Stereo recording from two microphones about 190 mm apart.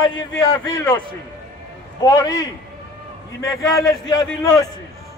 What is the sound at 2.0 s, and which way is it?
Speech, 20° left (ahead or behind).